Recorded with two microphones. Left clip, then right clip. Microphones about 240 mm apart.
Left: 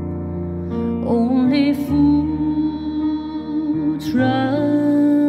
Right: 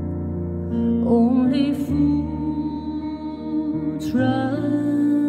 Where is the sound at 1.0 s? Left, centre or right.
Centre.